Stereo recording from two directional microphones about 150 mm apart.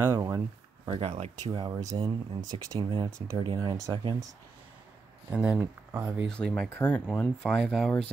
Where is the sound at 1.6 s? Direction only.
20° right (ahead or behind).